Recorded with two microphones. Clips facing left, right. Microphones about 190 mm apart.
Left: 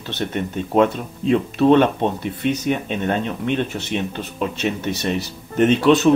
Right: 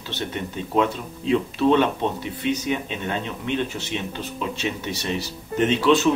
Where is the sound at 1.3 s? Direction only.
55° left (ahead or behind).